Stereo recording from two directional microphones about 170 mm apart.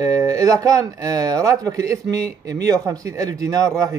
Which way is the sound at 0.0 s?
20° right (ahead or behind).